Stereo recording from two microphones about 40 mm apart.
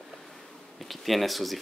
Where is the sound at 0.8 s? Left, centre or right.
Centre.